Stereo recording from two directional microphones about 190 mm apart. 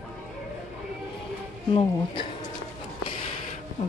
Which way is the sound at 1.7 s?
25° left (ahead or behind).